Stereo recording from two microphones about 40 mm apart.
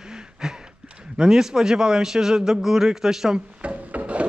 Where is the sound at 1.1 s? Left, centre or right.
Centre.